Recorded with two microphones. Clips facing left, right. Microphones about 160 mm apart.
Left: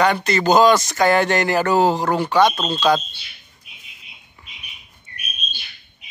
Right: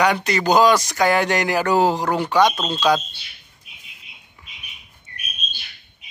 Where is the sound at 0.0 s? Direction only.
10° right (ahead or behind).